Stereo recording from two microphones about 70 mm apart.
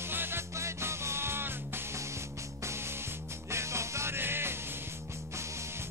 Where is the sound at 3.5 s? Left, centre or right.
Right.